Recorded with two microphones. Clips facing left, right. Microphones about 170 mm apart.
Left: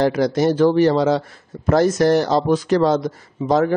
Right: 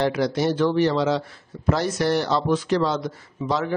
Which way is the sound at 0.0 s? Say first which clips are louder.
Left 5 dB; 45° left (ahead or behind).